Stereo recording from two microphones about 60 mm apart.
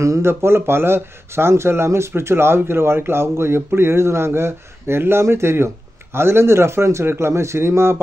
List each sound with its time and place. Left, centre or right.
0.2 s speech: right